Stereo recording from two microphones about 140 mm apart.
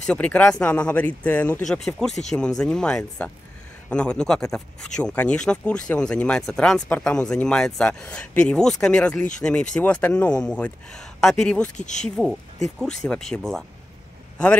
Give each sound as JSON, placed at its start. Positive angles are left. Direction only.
{"t": 0.0, "sound": "speech", "side_deg": 10}
{"t": 11.7, "sound": "speech", "side_deg": 60}
{"t": 12.2, "sound": "speech", "side_deg": 0}